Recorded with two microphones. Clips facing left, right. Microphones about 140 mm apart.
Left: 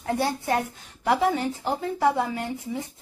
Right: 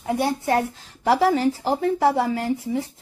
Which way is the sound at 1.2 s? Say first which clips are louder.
Right 5 dB; 90° right.